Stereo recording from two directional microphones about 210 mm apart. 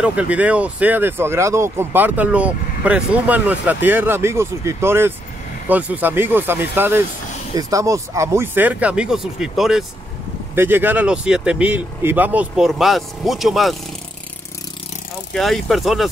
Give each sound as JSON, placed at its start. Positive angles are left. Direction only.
{"t": 0.0, "sound": "speech", "side_deg": -5}
{"t": 15.3, "sound": "speech", "side_deg": 0}